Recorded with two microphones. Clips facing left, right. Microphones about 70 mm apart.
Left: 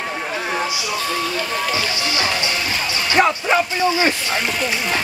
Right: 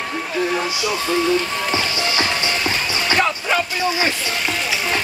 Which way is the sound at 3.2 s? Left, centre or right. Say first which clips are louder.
Left 6 dB; centre.